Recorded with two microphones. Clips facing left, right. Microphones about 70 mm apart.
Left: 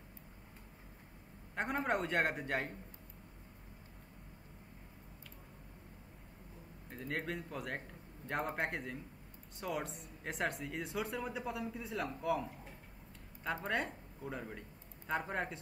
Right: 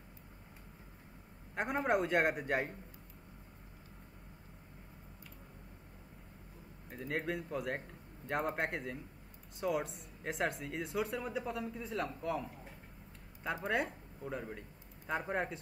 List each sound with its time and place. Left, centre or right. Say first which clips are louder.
1.5 s speech: right 3 dB; centre
6.9 s speech: right 3 dB; centre